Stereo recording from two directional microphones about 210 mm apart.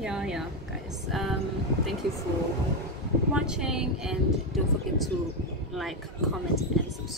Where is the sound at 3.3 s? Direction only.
5° right (ahead or behind).